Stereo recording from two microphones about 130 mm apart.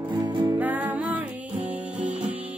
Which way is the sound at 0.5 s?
15° right (ahead or behind).